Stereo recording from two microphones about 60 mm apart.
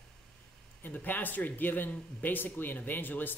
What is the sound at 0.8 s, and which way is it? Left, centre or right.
Speech, left.